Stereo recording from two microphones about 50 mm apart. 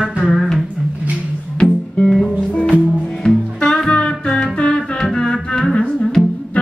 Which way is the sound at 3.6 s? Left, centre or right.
Centre.